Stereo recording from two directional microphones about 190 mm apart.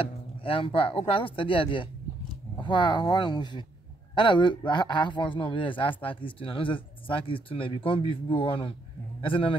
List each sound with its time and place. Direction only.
0.0 s speech: 30° left (ahead or behind)